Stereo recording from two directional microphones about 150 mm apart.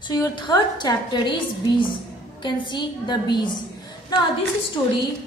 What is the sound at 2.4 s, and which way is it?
A woman's voice, 30° left (ahead or behind).